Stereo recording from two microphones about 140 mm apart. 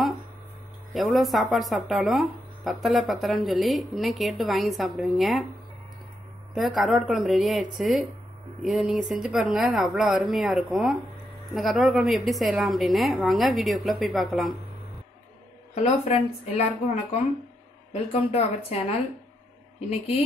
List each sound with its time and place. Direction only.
0.9 s speech: centre (ahead or behind)
6.5 s speech: centre (ahead or behind)
15.7 s speech: 50° left (ahead or behind)
18.3 s speech: 45° left (ahead or behind)